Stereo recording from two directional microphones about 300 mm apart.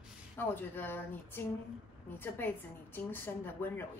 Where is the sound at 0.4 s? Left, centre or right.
Centre.